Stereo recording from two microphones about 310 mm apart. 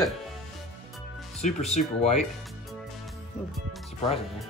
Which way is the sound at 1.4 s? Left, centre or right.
Left.